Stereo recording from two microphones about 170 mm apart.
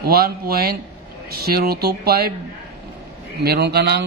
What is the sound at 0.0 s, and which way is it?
Speech, 65° right (ahead or behind).